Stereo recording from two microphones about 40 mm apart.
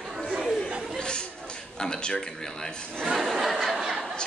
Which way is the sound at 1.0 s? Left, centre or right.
Left.